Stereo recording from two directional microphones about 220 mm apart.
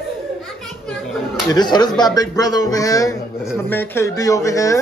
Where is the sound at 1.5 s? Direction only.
20° left (ahead or behind).